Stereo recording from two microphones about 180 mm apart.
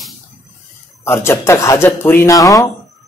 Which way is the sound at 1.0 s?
15° left (ahead or behind).